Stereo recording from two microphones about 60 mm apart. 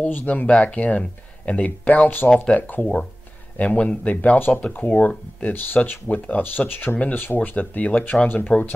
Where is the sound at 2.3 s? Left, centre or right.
Centre.